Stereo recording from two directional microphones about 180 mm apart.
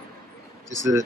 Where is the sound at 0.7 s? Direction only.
15° right (ahead or behind).